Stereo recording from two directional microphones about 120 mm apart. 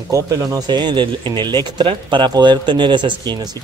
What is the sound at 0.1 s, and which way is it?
Speech, 30° right (ahead or behind).